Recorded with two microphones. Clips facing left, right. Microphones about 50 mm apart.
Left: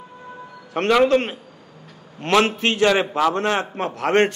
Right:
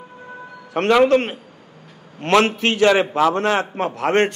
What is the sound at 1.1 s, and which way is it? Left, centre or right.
Speech, right.